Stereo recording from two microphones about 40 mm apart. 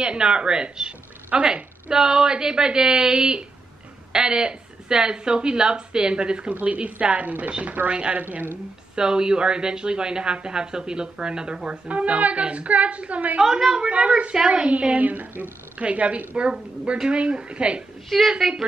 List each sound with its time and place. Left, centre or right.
0.0 s a woman's voice: right
8.2 s a woman's voice: right
8.9 s a woman's voice: centre
11.9 s a woman's voice: right
13.4 s a woman's voice: centre
13.7 s a woman's voice: right
18.4 s speech: centre